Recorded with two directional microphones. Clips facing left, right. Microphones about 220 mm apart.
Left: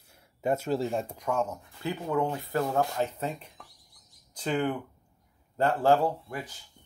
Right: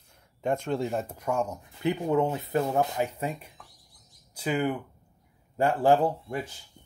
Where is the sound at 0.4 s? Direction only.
5° left (ahead or behind); by 6.5 s 25° right (ahead or behind).